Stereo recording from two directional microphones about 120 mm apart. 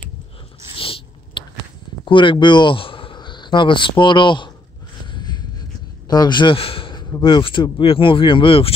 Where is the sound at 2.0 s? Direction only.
45° left (ahead or behind).